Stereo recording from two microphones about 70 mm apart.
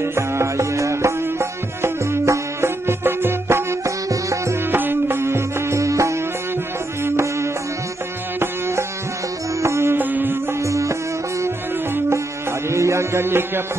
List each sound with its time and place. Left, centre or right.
0.0 s music: right
2.9 s music: right
4.1 s music: right
4.6 s music: right
9.6 s music: right
9.9 s music: right
10.6 s music: right
12.7 s music: right